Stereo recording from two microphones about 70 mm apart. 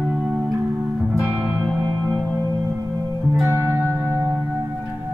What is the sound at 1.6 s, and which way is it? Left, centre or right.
Music, centre.